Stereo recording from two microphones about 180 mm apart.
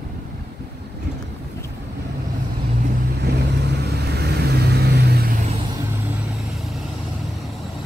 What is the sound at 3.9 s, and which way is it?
Vehicle, 65° right (ahead or behind).